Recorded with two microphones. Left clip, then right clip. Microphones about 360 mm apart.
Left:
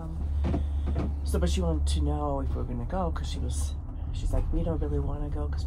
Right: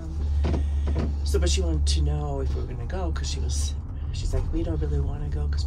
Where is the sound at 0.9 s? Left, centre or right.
Centre.